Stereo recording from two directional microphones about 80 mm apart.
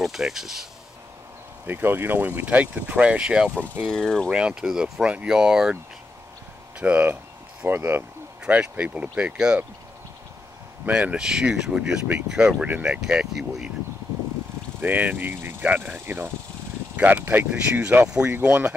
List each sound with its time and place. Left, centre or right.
0.0 s speech: centre
1.7 s speech: right
3.8 s speech: centre
4.3 s speech: centre
6.8 s speech: centre
7.6 s speech: right
8.5 s speech: centre
10.9 s speech: centre
13.0 s speech: centre
14.8 s speech: right